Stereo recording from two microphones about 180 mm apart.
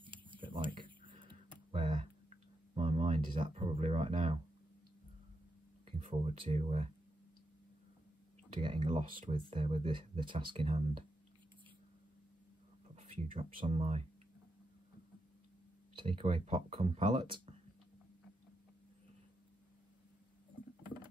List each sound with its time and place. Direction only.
0.0 s a sound: 25° right (ahead or behind)
3.3 s speech: 30° right (ahead or behind)
5.9 s speech: 35° right (ahead or behind)
8.5 s speech: 25° right (ahead or behind)
12.9 s speech: 35° right (ahead or behind)
16.0 s speech: 30° right (ahead or behind)